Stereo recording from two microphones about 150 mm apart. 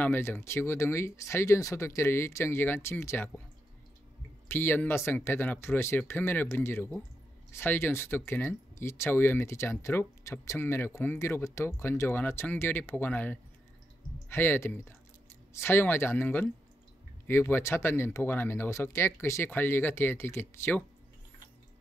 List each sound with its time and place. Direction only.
0.0 s speech: 15° left (ahead or behind)
4.5 s speech: 15° left (ahead or behind)